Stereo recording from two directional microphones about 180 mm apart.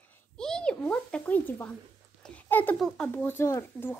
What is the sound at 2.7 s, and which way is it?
Speech, centre (ahead or behind).